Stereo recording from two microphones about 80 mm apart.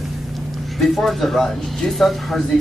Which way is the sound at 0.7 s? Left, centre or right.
Centre.